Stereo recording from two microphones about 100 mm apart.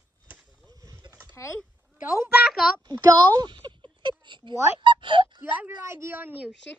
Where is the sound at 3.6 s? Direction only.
50° right (ahead or behind).